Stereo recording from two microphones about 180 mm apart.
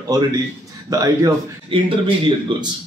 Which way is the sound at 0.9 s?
20° right (ahead or behind).